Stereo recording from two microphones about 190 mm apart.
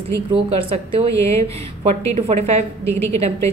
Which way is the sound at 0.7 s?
30° right (ahead or behind).